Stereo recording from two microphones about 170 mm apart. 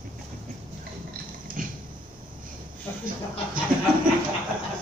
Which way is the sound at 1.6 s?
55° right (ahead or behind).